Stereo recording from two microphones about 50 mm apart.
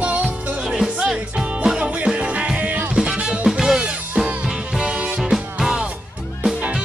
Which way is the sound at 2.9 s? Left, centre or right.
Centre.